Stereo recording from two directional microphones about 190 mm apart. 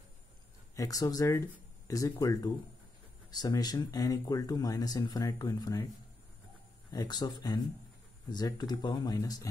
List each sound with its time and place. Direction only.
0.7 s speech: 20° left (ahead or behind)
6.9 s speech: 20° left (ahead or behind)